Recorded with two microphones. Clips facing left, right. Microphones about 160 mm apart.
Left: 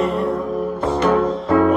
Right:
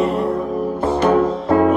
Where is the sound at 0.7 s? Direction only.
25° right (ahead or behind).